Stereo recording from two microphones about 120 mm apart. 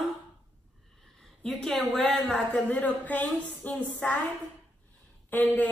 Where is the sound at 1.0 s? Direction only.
5° left (ahead or behind).